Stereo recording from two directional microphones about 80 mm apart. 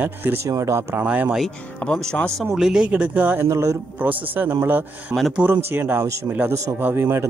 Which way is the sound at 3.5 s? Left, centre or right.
Right.